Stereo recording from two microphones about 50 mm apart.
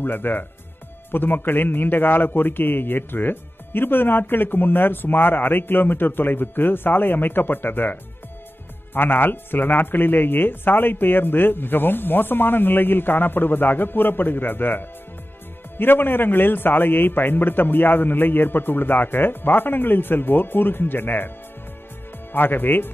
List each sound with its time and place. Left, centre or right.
0.0 s a man's voice: left
22.3 s a man's voice: left